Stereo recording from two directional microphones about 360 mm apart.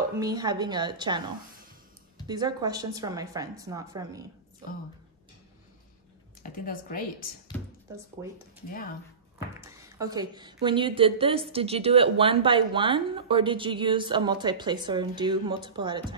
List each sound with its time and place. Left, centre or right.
0.2 s a woman's voice: centre
2.2 s a woman's voice: centre
6.4 s speech: left
8.2 s a woman's voice: centre
9.6 s a woman's voice: centre